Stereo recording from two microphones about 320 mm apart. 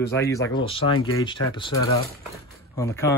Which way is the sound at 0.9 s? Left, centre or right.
Left.